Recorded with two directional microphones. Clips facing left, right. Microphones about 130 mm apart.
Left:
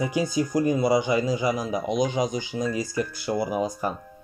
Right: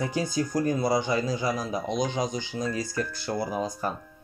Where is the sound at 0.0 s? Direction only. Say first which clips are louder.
Left 3 dB; 10° left (ahead or behind).